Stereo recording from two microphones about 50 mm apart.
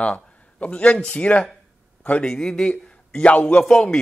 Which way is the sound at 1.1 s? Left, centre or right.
Left.